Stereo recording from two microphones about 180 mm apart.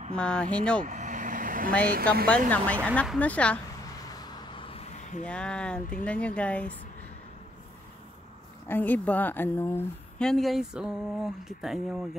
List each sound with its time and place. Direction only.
0.1 s a woman's voice: 5° left (ahead or behind)
0.8 s vehicle: 45° right (ahead or behind)
2.5 s speech: 10° left (ahead or behind)
3.8 s vehicle: 20° left (ahead or behind)
5.2 s a woman's voice: 5° left (ahead or behind)
8.6 s a woman's voice: 10° left (ahead or behind)